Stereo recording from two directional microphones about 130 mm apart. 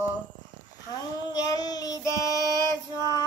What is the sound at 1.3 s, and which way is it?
Child singing, 30° left (ahead or behind).